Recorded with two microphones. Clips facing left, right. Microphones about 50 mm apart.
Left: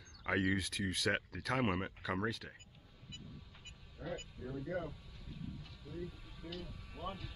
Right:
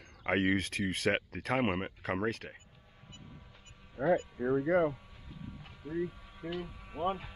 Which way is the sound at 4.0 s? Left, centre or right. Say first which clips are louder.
Right 16 dB; right.